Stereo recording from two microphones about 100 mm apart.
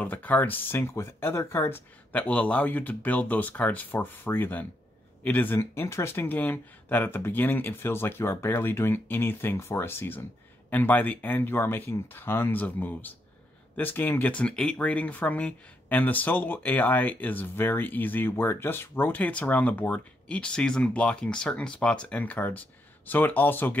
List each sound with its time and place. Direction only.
0.0 s speech: 15° left (ahead or behind)